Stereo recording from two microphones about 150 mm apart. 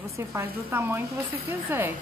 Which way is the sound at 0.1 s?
15° right (ahead or behind).